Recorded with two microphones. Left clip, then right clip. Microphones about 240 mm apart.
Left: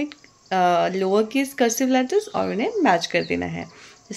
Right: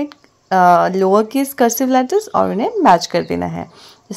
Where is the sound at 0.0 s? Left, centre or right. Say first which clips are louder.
Right 5 dB; right.